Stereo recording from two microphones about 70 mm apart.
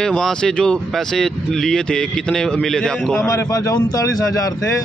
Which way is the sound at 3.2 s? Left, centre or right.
Left.